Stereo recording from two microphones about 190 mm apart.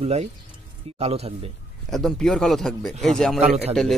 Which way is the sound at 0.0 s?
35° right (ahead or behind).